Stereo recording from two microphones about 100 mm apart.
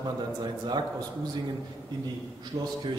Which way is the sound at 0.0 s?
45° right (ahead or behind).